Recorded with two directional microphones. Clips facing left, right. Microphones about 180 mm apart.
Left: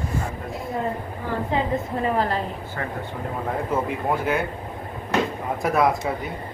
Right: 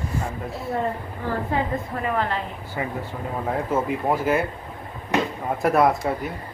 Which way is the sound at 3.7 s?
5° right (ahead or behind).